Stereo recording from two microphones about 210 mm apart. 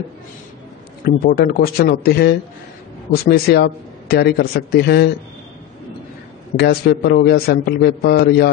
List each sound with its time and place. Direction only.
1.0 s a man's voice: 45° left (ahead or behind)
6.5 s a man's voice: 50° left (ahead or behind)